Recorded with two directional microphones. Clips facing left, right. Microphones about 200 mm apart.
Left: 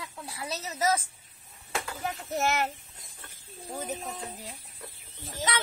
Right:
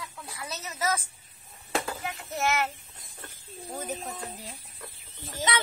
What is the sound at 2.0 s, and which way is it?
Speech, 40° left (ahead or behind).